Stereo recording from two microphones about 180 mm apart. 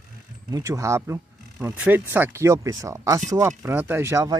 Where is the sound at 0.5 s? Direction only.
15° right (ahead or behind).